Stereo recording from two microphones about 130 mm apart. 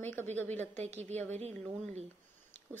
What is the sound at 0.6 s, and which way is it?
A woman's voice, 60° right (ahead or behind).